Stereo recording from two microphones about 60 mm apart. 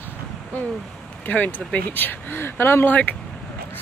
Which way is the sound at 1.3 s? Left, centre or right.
Left.